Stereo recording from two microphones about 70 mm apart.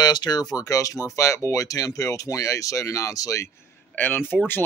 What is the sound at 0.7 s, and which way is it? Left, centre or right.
Speech, left.